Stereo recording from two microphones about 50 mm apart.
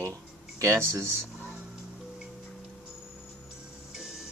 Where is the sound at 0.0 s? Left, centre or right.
Right.